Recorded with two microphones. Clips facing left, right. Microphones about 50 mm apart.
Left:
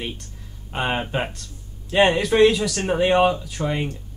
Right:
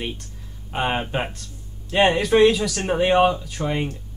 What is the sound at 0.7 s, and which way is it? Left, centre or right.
Speech, centre.